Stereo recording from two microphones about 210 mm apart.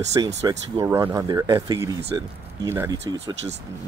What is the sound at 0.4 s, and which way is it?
Speech, 15° right (ahead or behind).